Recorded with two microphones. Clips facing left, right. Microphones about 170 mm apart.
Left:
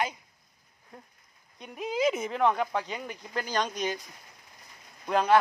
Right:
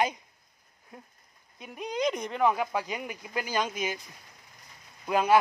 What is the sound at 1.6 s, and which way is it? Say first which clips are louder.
Speech: left 2 dB; centre (ahead or behind).